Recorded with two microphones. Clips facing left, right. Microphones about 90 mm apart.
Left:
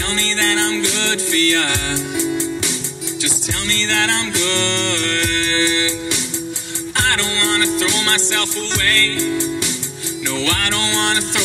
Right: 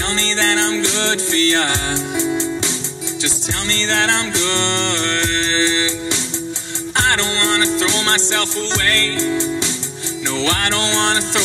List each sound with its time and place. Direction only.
0.1 s music: 25° right (ahead or behind)
3.7 s music: 25° right (ahead or behind)